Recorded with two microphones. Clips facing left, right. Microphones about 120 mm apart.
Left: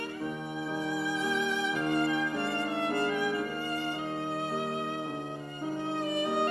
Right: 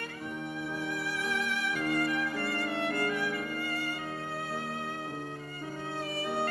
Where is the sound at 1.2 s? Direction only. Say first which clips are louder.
Left 3 dB; 20° left (ahead or behind).